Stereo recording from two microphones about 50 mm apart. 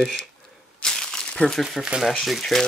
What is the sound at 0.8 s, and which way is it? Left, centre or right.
Crumpling, centre.